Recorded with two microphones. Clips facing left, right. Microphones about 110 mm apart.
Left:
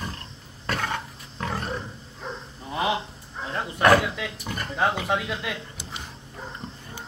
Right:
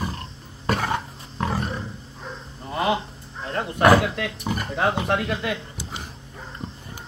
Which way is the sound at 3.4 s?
5° left (ahead or behind).